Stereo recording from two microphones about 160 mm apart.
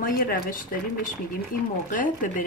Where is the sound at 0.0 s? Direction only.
60° left (ahead or behind).